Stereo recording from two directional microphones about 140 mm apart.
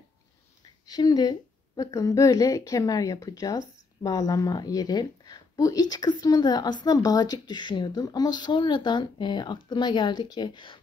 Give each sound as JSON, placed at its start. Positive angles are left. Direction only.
{"t": 0.8, "sound": "a woman's voice", "side_deg": 30}